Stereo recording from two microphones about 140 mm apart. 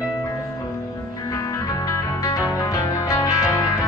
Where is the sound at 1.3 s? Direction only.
25° left (ahead or behind).